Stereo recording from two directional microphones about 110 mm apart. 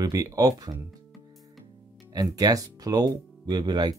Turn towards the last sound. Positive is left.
turn(degrees=-35)  # may be behind; listen again after turning